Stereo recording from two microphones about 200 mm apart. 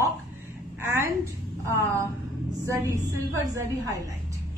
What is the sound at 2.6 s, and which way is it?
Speech, 15° right (ahead or behind).